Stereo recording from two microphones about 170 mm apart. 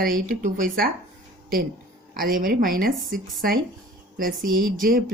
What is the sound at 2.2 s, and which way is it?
Speech, 60° right (ahead or behind).